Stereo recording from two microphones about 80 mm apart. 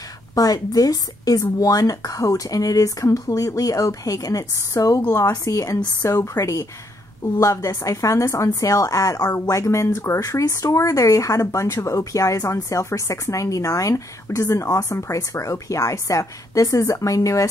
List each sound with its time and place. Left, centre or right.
0.3 s speech: left